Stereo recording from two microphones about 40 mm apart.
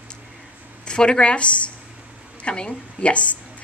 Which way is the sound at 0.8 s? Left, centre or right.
Left.